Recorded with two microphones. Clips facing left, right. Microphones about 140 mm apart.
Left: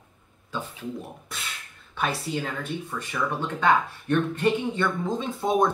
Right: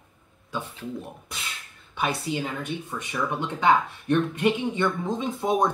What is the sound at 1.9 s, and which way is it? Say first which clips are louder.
Speech: right 1 dB; 15° right (ahead or behind).